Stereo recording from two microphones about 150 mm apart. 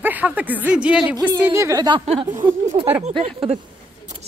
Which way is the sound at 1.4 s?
20° right (ahead or behind).